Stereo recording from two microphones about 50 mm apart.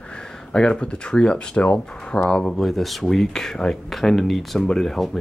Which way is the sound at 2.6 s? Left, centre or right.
Centre.